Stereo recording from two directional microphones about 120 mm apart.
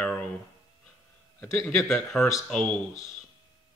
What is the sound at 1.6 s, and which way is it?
Speech, centre (ahead or behind).